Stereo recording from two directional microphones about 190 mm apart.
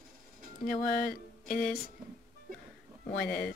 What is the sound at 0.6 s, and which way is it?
Music, 45° left (ahead or behind).